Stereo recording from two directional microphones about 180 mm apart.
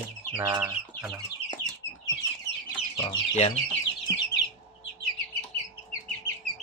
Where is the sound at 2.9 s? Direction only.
25° left (ahead or behind).